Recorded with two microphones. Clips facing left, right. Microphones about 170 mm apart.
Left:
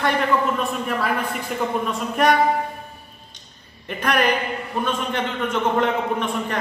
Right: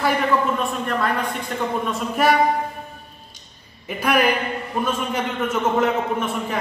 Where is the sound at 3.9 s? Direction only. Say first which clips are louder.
Right 1 dB; 5° right (ahead or behind).